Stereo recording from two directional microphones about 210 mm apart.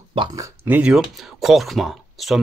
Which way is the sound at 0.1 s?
25° right (ahead or behind).